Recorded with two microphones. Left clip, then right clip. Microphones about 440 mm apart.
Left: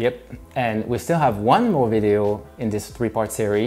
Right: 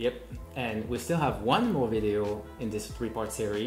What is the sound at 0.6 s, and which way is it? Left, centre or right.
Speech, left.